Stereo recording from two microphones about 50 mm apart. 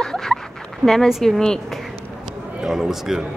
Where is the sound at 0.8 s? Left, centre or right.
Right.